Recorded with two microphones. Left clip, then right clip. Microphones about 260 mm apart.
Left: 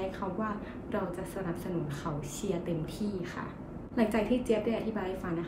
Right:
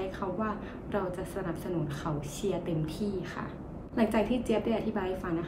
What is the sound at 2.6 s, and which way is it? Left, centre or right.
A woman's voice, centre.